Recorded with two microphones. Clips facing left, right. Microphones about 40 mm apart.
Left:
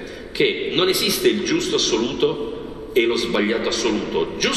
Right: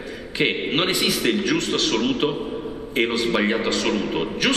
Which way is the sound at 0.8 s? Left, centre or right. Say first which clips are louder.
Left 3 dB; right.